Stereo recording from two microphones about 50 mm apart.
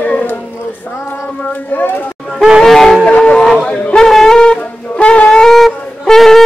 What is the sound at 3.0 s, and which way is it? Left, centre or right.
A man's voice, left.